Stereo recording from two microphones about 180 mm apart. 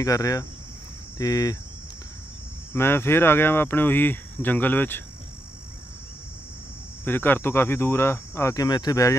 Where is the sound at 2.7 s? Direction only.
15° left (ahead or behind).